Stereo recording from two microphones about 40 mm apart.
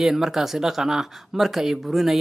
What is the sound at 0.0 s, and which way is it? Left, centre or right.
Speech, centre.